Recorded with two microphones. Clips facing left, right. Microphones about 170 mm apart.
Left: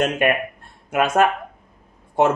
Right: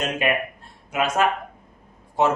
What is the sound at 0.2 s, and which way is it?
A man's voice, 55° left (ahead or behind).